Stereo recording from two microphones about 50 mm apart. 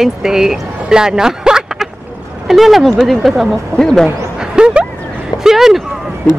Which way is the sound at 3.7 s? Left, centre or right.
Centre.